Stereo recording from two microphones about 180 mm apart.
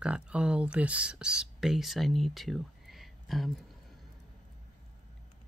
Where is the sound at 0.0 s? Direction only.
5° right (ahead or behind).